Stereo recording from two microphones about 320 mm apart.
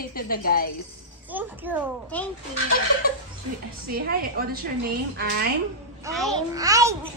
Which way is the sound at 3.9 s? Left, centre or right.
Right.